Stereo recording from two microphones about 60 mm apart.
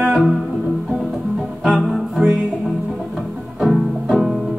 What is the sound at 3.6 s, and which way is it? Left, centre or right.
Music, centre.